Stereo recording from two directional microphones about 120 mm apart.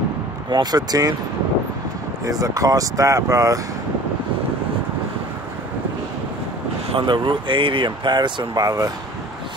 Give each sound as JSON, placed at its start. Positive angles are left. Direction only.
{"t": 0.5, "sound": "speech", "side_deg": -35}
{"t": 2.2, "sound": "speech", "side_deg": -30}
{"t": 6.9, "sound": "speech", "side_deg": -45}